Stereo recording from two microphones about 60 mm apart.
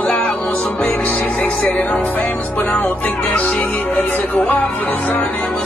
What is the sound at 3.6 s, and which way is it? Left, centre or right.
Music, left.